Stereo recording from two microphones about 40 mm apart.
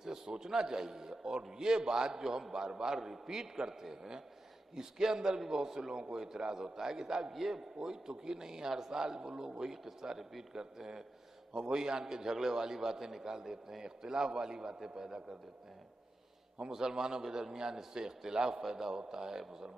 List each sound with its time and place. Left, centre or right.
0.0 s a man's voice: centre
4.7 s a man's voice: centre
16.7 s a man's voice: centre